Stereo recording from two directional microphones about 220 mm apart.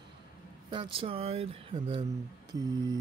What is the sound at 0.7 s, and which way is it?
Speech, 25° right (ahead or behind).